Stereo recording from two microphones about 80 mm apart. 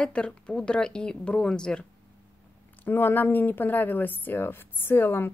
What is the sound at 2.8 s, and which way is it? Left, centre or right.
Speech, left.